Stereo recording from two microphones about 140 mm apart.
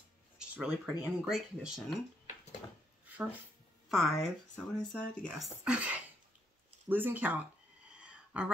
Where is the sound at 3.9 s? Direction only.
Centre (ahead or behind).